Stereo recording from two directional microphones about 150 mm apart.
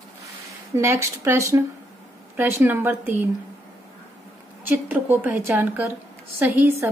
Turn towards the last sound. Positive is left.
turn(degrees=-15)  # may be behind; listen again after turning